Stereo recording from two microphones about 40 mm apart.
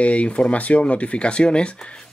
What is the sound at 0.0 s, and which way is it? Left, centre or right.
Speech, left.